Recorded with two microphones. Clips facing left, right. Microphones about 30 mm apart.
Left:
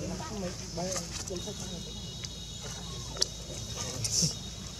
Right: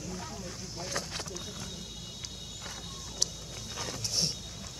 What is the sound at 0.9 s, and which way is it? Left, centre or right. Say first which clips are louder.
Speech: right 1 dB; right.